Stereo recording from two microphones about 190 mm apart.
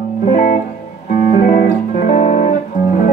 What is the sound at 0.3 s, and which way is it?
Music, 50° left (ahead or behind).